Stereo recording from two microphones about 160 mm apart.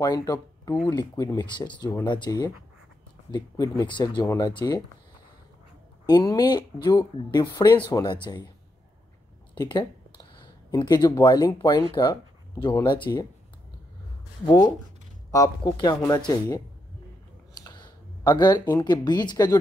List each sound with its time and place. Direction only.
0.0 s speech: 20° left (ahead or behind)
6.0 s speech: 25° left (ahead or behind)
9.6 s speech: 25° left (ahead or behind)
14.4 s speech: 20° left (ahead or behind)
17.6 s speech: 25° left (ahead or behind)